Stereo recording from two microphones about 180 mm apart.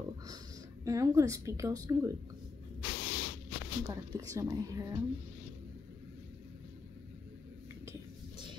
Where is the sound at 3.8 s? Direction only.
20° right (ahead or behind).